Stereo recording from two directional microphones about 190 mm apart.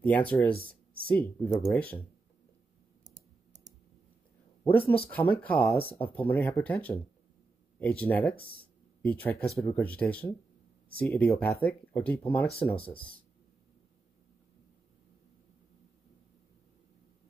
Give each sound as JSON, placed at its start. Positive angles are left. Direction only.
{"t": 0.0, "sound": "speech", "side_deg": 10}
{"t": 4.6, "sound": "speech", "side_deg": 10}
{"t": 12.7, "sound": "speech", "side_deg": 30}